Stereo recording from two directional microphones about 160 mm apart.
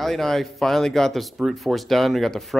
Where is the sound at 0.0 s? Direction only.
Centre (ahead or behind).